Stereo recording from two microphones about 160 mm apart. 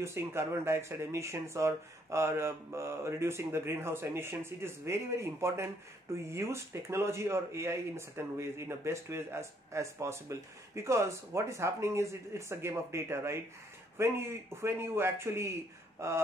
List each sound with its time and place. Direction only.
0.0 s speech: 15° right (ahead or behind)